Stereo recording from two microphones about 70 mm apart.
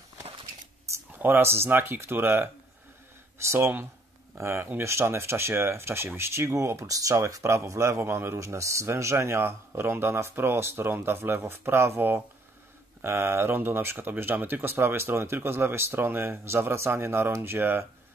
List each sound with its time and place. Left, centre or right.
1.2 s speech: right